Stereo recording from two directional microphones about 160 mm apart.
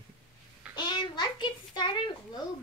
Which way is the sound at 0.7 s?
30° left (ahead or behind).